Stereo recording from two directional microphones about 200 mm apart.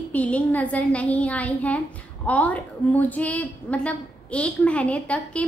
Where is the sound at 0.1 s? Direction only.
5° left (ahead or behind).